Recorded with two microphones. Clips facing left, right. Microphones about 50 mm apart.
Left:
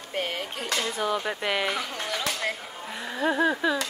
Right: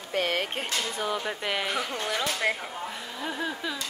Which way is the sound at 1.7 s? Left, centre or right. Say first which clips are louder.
Right 1 dB; centre.